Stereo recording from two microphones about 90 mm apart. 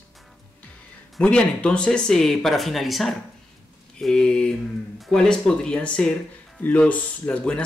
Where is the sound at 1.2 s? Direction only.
10° left (ahead or behind).